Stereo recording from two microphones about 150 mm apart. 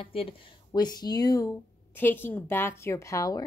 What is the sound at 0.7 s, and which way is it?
A woman's voice, 30° left (ahead or behind).